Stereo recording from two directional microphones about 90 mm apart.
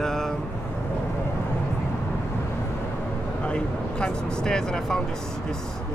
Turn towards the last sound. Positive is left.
turn(degrees=5)  # may be behind; listen again after turning